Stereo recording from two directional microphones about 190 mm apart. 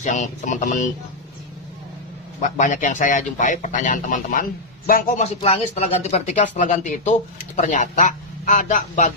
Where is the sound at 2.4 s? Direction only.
40° left (ahead or behind).